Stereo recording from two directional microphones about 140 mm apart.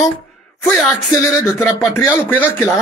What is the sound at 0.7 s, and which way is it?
A man's voice, centre (ahead or behind).